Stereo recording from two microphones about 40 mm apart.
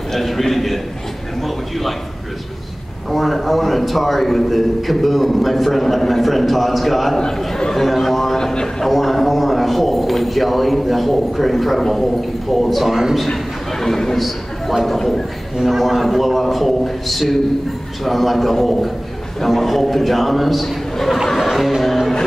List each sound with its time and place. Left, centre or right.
0.1 s a sound: centre
3.1 s a man's voice: centre
7.2 s a man's voice: centre
8.4 s speech: centre
8.8 s a man's voice: centre
13.3 s a sound: centre
14.7 s a man's voice: centre
15.0 s a man's voice: centre
15.5 s a man's voice: centre
21.4 s music: centre